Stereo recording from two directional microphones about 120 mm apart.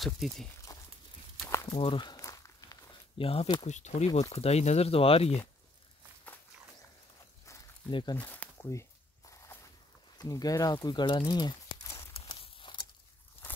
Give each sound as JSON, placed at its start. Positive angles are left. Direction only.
{"t": 0.0, "sound": "speech", "side_deg": 0}
{"t": 0.7, "sound": "horse", "side_deg": 25}
{"t": 1.7, "sound": "walk", "side_deg": 45}
{"t": 3.2, "sound": "speech", "side_deg": 55}
{"t": 3.6, "sound": "speech", "side_deg": 70}
{"t": 4.2, "sound": "speech", "side_deg": 60}
{"t": 7.9, "sound": "speech", "side_deg": 35}
{"t": 8.2, "sound": "a sound", "side_deg": 15}
{"t": 10.1, "sound": "speech", "side_deg": 30}
{"t": 12.1, "sound": "a sound", "side_deg": 45}